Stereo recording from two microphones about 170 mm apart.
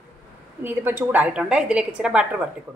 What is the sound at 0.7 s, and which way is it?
A woman's voice, 10° right (ahead or behind).